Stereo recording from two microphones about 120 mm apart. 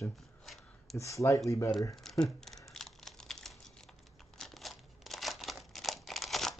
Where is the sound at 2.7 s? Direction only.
Centre (ahead or behind).